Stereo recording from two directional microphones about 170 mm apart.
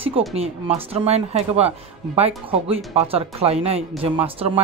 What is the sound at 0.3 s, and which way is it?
A man's voice, 35° right (ahead or behind).